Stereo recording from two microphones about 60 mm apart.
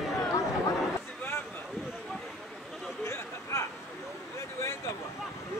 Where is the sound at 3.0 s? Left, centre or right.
Left.